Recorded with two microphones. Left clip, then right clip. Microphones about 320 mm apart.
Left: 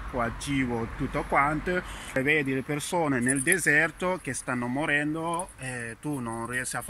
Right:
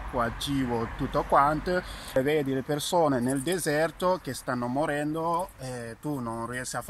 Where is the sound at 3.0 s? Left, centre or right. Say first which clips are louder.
Left 1 dB; centre.